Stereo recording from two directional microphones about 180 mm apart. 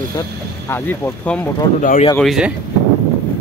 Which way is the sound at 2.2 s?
Centre (ahead or behind).